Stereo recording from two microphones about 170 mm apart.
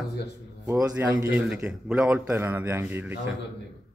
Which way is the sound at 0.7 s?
20° right (ahead or behind).